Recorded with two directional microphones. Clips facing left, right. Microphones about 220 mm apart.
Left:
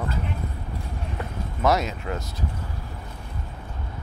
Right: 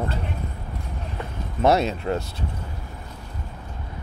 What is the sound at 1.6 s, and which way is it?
Speech, 30° right (ahead or behind).